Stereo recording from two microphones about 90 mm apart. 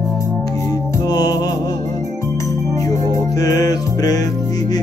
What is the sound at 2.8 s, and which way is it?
Music, 40° left (ahead or behind).